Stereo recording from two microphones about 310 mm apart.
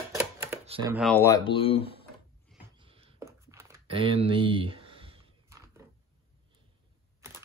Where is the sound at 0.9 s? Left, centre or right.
Centre.